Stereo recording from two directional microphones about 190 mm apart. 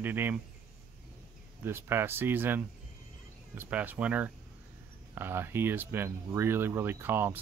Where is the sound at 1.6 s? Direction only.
10° right (ahead or behind).